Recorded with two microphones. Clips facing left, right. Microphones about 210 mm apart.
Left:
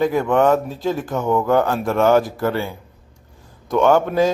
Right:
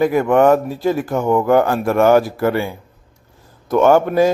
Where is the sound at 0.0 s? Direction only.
10° right (ahead or behind).